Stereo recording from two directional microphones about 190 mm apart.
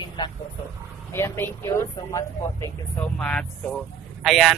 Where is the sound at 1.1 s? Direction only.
15° left (ahead or behind).